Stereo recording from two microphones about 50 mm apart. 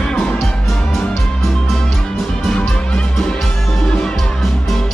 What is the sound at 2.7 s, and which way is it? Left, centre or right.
Music, centre.